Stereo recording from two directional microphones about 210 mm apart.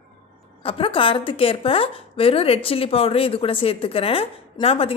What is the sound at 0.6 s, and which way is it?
A woman's voice, 25° left (ahead or behind).